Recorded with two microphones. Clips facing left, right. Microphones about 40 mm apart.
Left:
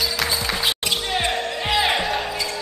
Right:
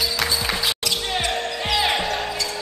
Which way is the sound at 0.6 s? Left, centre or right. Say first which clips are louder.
Left 1 dB; left.